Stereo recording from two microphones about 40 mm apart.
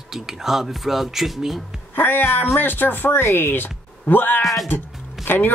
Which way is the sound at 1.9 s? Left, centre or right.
Left.